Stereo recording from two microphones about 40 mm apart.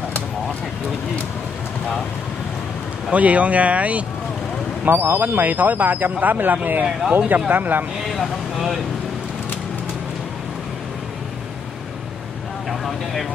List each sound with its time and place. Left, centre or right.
3.1 s speech: right
4.8 s speech: right
8.1 s vehicle: centre
12.8 s speech: centre